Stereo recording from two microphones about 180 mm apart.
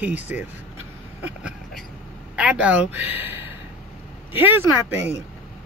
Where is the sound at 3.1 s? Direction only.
10° right (ahead or behind).